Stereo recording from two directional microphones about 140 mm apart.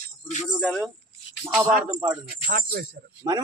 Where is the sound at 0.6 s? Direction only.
5° right (ahead or behind).